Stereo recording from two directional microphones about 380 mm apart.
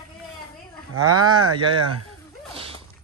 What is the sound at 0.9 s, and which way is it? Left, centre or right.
Speech, right.